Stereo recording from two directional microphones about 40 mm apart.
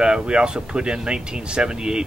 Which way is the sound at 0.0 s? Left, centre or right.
Right.